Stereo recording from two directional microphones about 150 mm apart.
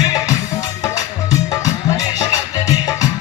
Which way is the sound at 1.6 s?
25° left (ahead or behind).